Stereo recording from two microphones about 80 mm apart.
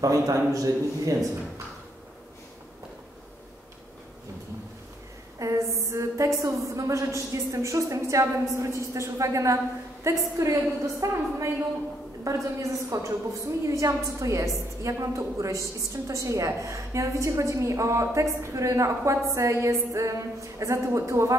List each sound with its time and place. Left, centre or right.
0.0 s a man's voice: right
5.4 s a sound: right
5.8 s a woman's voice: right